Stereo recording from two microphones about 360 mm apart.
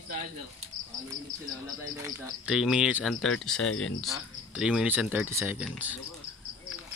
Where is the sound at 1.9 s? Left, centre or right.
Centre.